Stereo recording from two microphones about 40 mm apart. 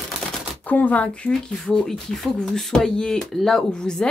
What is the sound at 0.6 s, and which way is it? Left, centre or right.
Speech, left.